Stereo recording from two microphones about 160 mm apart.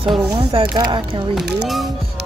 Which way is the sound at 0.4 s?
35° right (ahead or behind).